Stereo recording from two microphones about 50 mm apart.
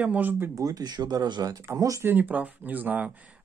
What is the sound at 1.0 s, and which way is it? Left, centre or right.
Speech, right.